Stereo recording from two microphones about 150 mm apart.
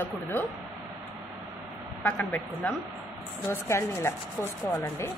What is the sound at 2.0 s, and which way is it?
A woman's voice, 10° left (ahead or behind).